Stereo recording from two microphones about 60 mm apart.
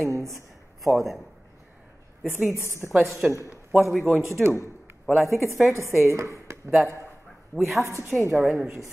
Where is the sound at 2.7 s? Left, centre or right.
Right.